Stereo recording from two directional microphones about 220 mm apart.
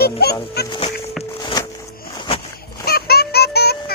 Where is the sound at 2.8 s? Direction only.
45° left (ahead or behind).